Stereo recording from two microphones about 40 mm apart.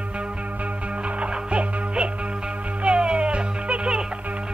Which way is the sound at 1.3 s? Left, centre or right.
Right.